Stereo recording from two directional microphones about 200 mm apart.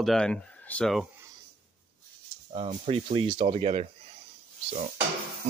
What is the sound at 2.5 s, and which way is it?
Speech, 30° right (ahead or behind).